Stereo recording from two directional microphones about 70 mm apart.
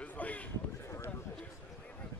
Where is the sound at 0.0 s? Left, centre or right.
Left.